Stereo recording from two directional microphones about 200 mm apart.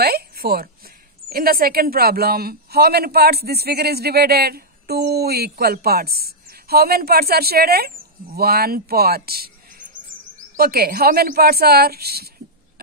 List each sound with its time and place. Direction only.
0.0 s a woman's voice: 50° right (ahead or behind)